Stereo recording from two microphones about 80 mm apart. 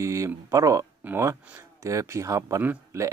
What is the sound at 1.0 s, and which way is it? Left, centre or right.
Speech, right.